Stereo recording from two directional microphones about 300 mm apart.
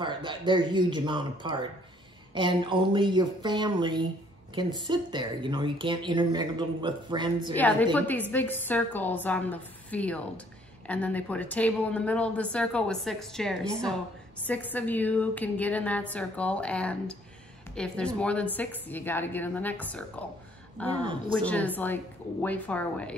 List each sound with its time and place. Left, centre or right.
0.0 s a woman's voice: centre
7.5 s speech: centre